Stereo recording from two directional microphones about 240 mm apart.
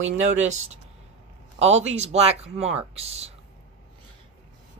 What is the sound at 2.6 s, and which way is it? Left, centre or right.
Speech, right.